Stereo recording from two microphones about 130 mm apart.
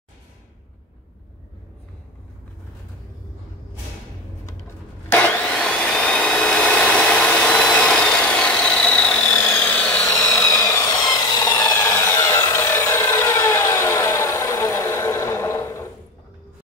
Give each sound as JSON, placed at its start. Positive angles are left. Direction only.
{"t": 5.1, "sound": "vacuum cleaner", "side_deg": 10}
{"t": 11.7, "sound": "wood", "side_deg": 20}